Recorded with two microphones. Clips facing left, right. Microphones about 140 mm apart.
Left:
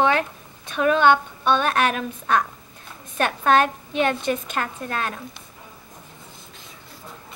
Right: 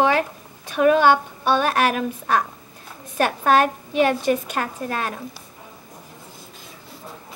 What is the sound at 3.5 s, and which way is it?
A woman's voice, 5° right (ahead or behind).